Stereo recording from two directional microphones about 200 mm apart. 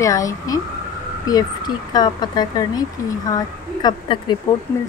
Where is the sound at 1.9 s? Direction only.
20° left (ahead or behind).